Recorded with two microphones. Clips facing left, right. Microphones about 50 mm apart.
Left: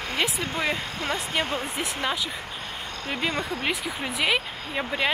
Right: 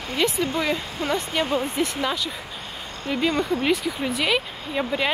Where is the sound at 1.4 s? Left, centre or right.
Left.